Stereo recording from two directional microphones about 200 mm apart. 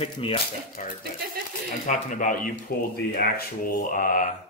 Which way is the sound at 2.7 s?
50° left (ahead or behind).